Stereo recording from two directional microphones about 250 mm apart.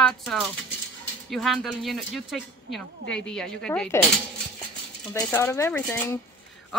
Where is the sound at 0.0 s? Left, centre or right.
Centre.